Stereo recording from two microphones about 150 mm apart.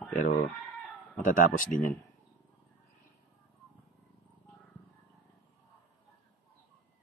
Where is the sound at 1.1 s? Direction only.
60° left (ahead or behind).